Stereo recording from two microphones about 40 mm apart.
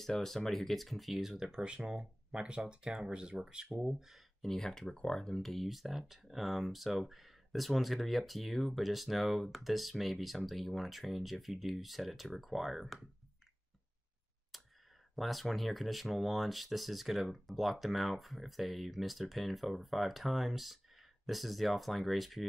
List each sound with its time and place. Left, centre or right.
0.0 s speech: centre; by 3.6 s right
3.7 s speech: centre
4.4 s speech: centre
14.5 s clicking: centre
15.1 s speech: centre